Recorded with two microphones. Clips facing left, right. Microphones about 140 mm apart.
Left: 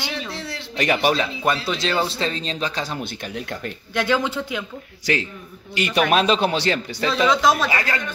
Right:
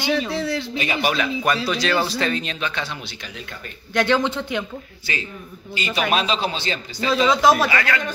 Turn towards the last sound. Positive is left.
turn(degrees=30)  # may be behind; listen again after turning